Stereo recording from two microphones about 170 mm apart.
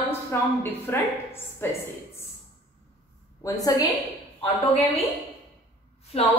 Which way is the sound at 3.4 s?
20° left (ahead or behind).